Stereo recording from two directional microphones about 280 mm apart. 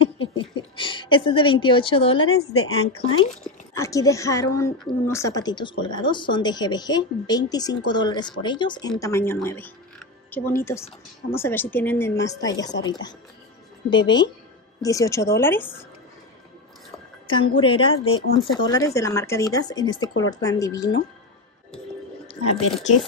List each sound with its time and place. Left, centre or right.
0.0 s speech: centre
2.3 s speech: left
3.4 s a woman's voice: centre
17.3 s a woman's voice: centre
18.0 s speech: left
18.5 s a woman's voice: centre